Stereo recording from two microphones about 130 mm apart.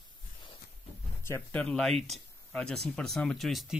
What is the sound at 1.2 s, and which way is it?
Speech, 20° left (ahead or behind).